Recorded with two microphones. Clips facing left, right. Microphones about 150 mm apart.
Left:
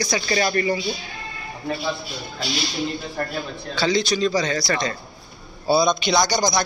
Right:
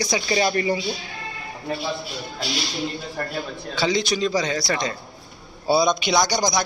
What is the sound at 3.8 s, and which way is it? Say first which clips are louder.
A man's voice: left 1 dB; 15° right (ahead or behind).